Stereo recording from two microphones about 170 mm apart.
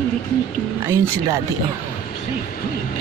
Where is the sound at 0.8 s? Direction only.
15° right (ahead or behind).